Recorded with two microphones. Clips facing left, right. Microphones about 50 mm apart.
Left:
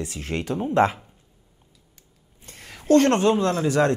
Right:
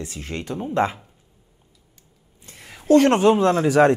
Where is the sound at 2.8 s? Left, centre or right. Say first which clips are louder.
Right 2 dB; centre.